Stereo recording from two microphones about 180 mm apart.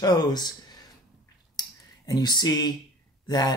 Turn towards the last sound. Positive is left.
turn(degrees=20)  # may be behind; listen again after turning